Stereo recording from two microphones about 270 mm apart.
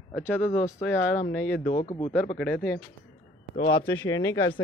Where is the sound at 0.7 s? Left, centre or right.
Centre.